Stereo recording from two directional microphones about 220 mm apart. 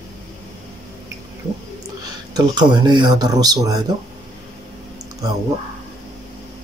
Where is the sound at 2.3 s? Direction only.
20° right (ahead or behind).